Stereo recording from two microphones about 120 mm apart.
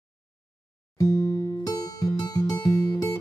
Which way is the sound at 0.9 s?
25° left (ahead or behind).